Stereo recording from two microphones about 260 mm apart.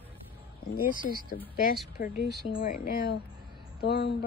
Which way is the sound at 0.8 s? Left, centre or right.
Left.